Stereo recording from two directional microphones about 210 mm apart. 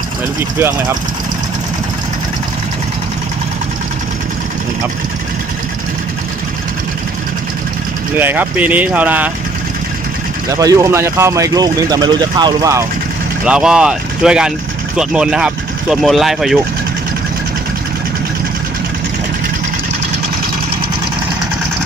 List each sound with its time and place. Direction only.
0.4 s speech: 10° right (ahead or behind)
8.1 s speech: 10° right (ahead or behind)
10.5 s speech: 15° right (ahead or behind)
13.5 s speech: 5° right (ahead or behind)